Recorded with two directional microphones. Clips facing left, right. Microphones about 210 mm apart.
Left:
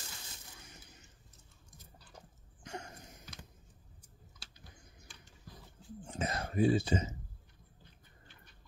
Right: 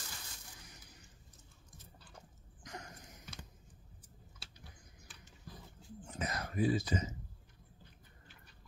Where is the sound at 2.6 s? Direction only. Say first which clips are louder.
Left 4 dB; 30° left (ahead or behind).